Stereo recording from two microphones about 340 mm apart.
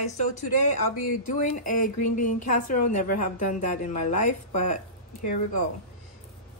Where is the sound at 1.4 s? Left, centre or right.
Left.